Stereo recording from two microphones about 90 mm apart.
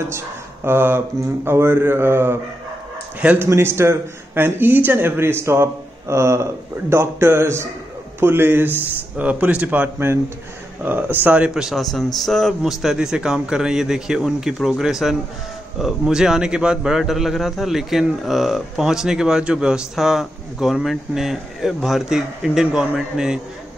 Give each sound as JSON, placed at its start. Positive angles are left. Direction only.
{"t": 0.7, "sound": "a man's voice", "side_deg": -25}
{"t": 3.2, "sound": "a man's voice", "side_deg": -15}
{"t": 3.4, "sound": "a man's voice", "side_deg": -30}